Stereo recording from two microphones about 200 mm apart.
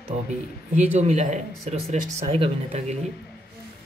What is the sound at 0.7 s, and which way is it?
Speech, 35° right (ahead or behind).